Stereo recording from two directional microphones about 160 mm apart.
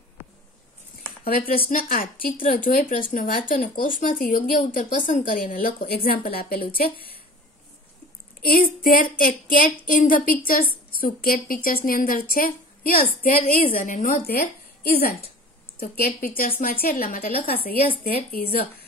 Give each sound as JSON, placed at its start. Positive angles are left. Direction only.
{"t": 1.2, "sound": "speech", "side_deg": 65}
{"t": 8.4, "sound": "speech", "side_deg": 65}
{"t": 16.2, "sound": "speech", "side_deg": 65}